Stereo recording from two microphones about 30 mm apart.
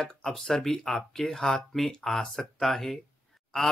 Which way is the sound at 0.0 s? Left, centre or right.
Left.